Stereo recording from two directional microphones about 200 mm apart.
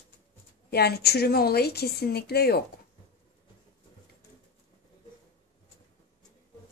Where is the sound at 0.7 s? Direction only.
50° left (ahead or behind).